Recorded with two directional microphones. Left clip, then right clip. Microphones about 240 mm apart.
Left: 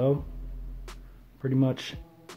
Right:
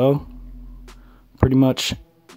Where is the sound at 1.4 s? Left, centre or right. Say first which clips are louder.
Right 11 dB; right.